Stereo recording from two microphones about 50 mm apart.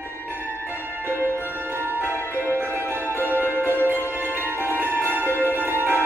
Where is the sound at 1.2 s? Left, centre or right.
Right.